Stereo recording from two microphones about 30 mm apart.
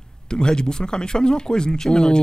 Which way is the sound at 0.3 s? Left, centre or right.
Left.